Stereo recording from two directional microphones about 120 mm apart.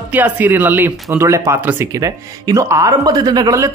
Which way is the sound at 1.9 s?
30° right (ahead or behind).